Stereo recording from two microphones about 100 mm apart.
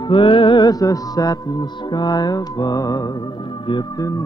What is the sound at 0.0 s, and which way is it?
Music, 60° left (ahead or behind).